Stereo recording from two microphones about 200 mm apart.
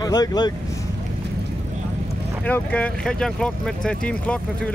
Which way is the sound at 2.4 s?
5° left (ahead or behind).